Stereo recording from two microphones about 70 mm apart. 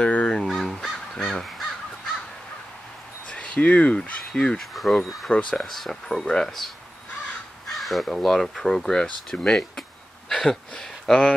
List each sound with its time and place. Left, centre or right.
0.0 s crow: centre
0.4 s crow: centre
3.3 s speech: centre
4.6 s speech: centre
5.3 s speech: centre
5.7 s speech: centre
10.3 s a sound: centre
10.7 s speech: centre